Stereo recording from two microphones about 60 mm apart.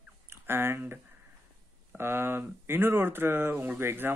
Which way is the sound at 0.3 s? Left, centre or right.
Right.